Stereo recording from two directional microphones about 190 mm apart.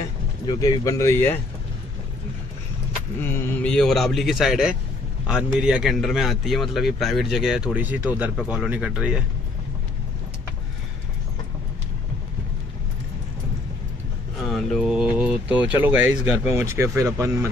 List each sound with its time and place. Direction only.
0.5 s speech: 20° left (ahead or behind)
3.2 s a man's voice: 10° left (ahead or behind); by 9.2 s 5° right (ahead or behind)
14.5 s mantra: centre (ahead or behind)
15.8 s speech: 10° right (ahead or behind)